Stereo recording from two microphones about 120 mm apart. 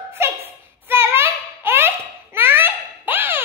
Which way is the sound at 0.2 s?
20° right (ahead or behind).